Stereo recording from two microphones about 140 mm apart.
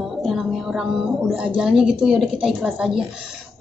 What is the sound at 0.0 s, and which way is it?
Music, centre (ahead or behind).